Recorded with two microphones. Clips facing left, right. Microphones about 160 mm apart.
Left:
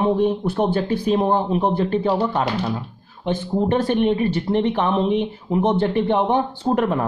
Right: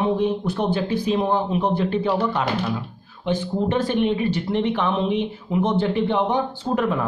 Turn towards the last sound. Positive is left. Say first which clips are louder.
# left 3 dB
turn(degrees=45)  # may be behind; listen again after turning